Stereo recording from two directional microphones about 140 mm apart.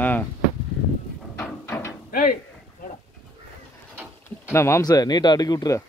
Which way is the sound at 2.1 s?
90° left.